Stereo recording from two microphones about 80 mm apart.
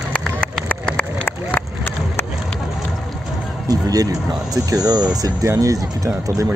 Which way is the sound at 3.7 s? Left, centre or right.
Right.